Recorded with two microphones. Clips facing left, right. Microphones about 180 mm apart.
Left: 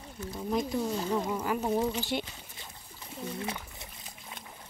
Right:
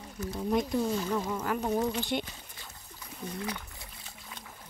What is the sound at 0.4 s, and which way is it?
Speech, centre (ahead or behind).